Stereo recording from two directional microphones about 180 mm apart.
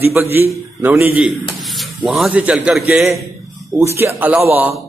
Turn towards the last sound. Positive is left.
turn(degrees=-10)  # may be behind; listen again after turning